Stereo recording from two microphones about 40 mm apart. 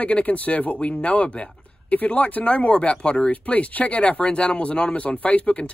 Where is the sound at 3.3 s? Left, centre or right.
Left.